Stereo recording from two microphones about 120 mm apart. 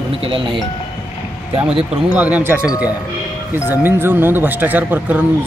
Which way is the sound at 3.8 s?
20° right (ahead or behind).